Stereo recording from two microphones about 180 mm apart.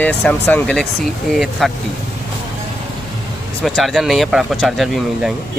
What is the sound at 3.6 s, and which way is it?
Speech, centre (ahead or behind).